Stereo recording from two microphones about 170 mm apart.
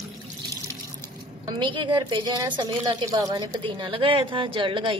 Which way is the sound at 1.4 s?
25° right (ahead or behind).